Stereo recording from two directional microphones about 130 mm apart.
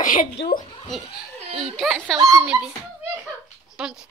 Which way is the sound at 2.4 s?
10° right (ahead or behind).